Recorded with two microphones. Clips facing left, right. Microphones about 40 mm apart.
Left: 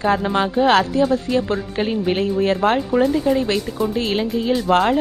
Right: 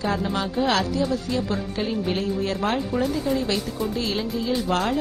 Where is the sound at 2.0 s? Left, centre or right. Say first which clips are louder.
Left 7 dB; left.